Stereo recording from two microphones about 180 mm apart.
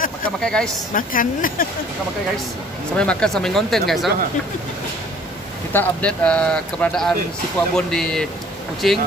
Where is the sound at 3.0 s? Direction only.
5° left (ahead or behind).